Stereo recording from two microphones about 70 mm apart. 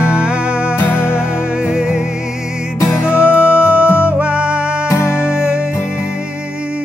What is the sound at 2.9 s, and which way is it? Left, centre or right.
Music, left.